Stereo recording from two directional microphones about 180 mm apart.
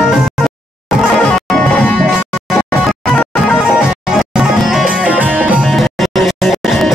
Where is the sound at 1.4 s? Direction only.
5° left (ahead or behind).